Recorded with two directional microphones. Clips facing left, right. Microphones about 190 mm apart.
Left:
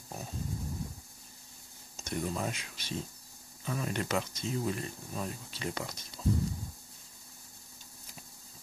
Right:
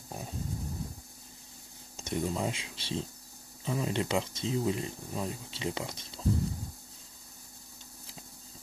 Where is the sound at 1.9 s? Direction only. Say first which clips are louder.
Right 3 dB; 20° right (ahead or behind).